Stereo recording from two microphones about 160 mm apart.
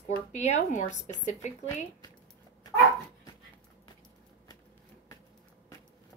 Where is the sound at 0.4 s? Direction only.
50° left (ahead or behind).